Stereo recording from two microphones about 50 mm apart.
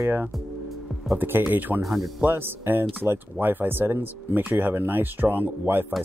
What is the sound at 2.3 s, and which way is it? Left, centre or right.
Speech, right.